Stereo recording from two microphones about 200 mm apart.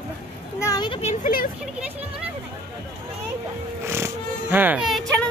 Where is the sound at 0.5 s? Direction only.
20° left (ahead or behind).